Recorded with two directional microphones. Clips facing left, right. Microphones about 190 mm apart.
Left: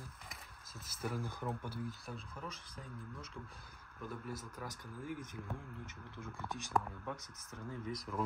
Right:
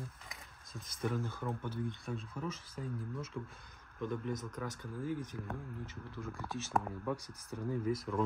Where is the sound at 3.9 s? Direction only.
5° left (ahead or behind).